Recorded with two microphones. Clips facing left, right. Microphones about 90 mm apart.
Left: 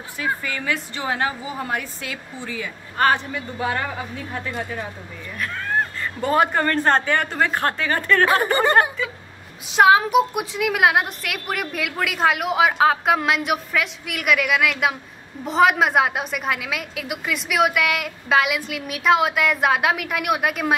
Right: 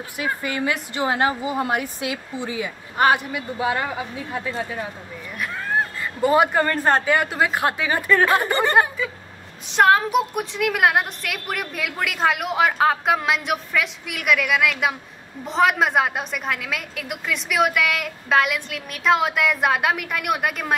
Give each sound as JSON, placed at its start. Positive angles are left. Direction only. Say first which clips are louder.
{"t": 0.2, "sound": "a woman's voice", "louder": "right 1 dB", "side_deg": -20}
{"t": 5.4, "sound": "a woman's voice", "louder": "even", "side_deg": -5}
{"t": 8.3, "sound": "a woman's voice", "louder": "left 1 dB", "side_deg": 10}